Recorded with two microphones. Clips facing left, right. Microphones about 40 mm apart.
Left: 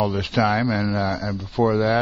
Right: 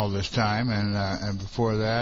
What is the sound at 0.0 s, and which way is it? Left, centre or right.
Speech, centre.